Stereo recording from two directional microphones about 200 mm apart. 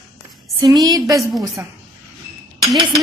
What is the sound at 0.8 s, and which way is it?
Speech, 20° right (ahead or behind).